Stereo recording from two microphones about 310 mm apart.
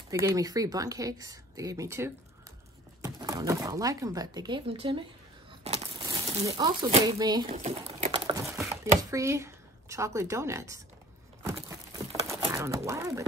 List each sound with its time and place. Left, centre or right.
0.1 s speech: centre
7.5 s patter: right
9.1 s speech: centre
12.2 s a sound: centre